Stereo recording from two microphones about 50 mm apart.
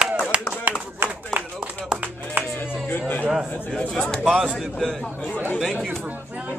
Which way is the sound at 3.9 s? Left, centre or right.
Centre.